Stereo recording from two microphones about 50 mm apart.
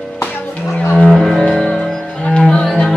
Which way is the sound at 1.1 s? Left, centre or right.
Centre.